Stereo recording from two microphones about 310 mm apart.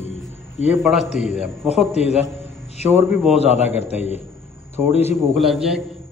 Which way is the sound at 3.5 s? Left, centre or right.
Left.